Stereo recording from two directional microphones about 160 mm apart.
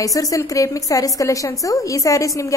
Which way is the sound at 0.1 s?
20° left (ahead or behind).